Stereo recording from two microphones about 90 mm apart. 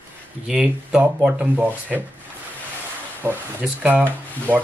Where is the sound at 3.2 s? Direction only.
20° right (ahead or behind).